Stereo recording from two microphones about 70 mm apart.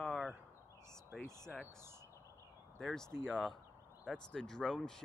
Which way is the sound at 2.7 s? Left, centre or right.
Centre.